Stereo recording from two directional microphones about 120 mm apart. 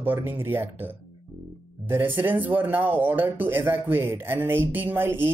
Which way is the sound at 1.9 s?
20° right (ahead or behind).